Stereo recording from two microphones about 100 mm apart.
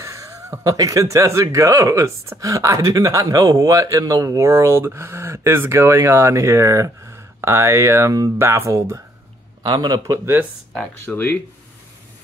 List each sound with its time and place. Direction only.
0.0 s speech: 30° right (ahead or behind)
9.7 s speech: 45° right (ahead or behind); by 10.4 s 30° right (ahead or behind)
11.1 s speech: 15° left (ahead or behind)